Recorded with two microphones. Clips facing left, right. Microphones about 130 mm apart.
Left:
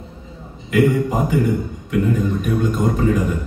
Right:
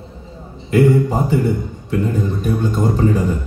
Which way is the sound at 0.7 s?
35° right (ahead or behind).